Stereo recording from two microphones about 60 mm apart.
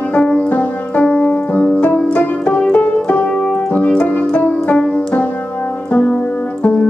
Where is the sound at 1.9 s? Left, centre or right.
Left.